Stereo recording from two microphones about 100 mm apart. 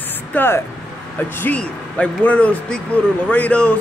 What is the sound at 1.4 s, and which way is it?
Speech, 15° left (ahead or behind).